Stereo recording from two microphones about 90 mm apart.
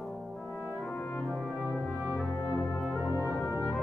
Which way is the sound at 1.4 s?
Centre (ahead or behind).